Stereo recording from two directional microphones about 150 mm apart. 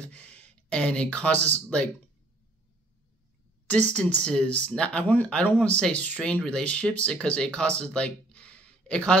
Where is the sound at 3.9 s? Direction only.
10° left (ahead or behind).